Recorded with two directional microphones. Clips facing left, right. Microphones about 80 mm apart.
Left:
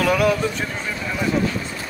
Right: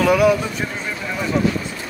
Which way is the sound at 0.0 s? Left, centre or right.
Centre.